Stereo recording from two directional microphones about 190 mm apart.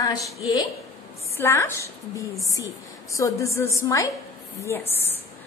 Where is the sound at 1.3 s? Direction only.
15° left (ahead or behind).